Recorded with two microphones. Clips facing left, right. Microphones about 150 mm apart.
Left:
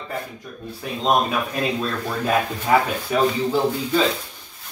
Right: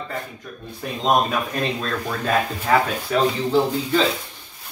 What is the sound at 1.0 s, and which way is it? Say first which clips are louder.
Speech: even; 5° left (ahead or behind).